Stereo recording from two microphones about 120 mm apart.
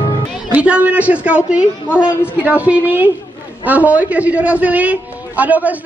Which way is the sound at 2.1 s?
20° left (ahead or behind).